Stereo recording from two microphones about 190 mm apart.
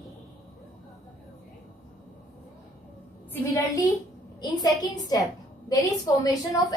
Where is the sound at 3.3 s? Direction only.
15° left (ahead or behind).